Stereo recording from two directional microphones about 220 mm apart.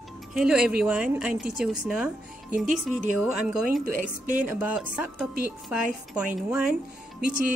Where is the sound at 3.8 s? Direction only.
35° right (ahead or behind).